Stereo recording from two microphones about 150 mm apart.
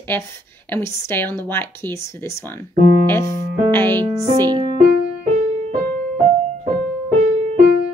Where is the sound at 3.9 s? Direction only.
30° right (ahead or behind).